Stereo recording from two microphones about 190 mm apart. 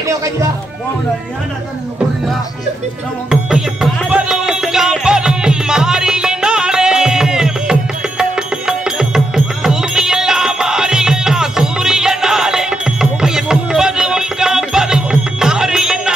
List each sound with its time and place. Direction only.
0.0 s speech: 15° right (ahead or behind)
3.3 s music: 5° right (ahead or behind)